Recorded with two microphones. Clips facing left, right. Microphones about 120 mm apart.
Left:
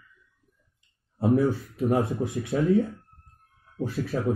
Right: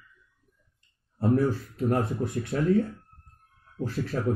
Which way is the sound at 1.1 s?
15° left (ahead or behind).